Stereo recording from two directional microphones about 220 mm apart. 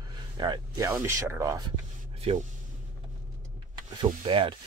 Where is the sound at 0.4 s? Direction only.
20° right (ahead or behind).